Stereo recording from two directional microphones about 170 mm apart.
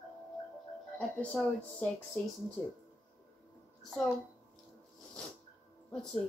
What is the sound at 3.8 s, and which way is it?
Speech, centre (ahead or behind).